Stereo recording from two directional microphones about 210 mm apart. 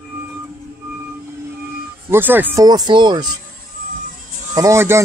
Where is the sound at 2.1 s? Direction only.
10° right (ahead or behind).